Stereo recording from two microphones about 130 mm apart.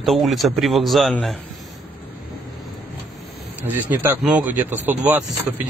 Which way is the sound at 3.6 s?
15° right (ahead or behind).